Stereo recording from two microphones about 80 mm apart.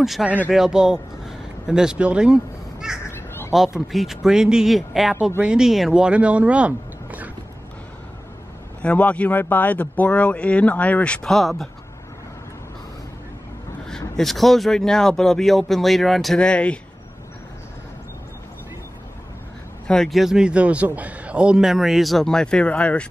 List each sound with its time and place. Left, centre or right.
0.0 s a man's voice: centre
3.1 s crow: left
3.5 s a man's voice: centre
8.8 s speech: centre
11.2 s a man's voice: centre
13.8 s a man's voice: centre
16.3 s speech: centre
19.9 s a man's voice: centre